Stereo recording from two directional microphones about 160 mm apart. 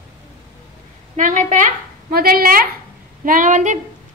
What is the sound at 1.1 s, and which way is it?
A woman's voice, 50° right (ahead or behind).